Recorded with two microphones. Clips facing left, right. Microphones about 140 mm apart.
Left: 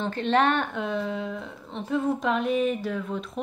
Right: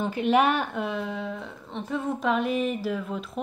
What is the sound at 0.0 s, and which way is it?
A woman's voice, 10° right (ahead or behind).